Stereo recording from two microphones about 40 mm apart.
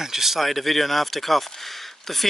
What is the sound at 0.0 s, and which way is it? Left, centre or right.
Speech, centre.